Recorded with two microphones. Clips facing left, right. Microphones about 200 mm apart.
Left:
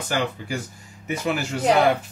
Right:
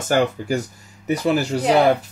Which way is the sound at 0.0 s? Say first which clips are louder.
Right 7 dB; 45° right (ahead or behind).